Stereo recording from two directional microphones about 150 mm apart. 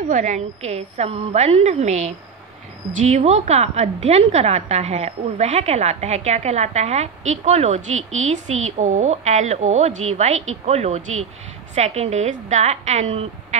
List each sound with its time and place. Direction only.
0.1 s a woman's voice: 55° right (ahead or behind)